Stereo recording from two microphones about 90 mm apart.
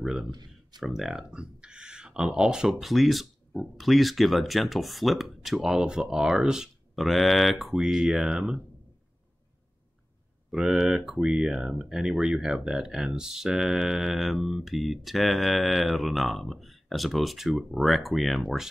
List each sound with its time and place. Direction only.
0.0 s speech: 5° right (ahead or behind)
0.3 s speech: 55° right (ahead or behind)
0.7 s speech: centre (ahead or behind)
10.5 s speech: 5° right (ahead or behind)